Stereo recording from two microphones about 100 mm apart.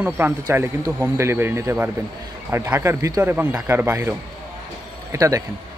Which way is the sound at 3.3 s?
15° right (ahead or behind).